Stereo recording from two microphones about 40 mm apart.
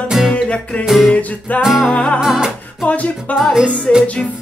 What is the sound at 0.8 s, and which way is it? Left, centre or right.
Music, centre.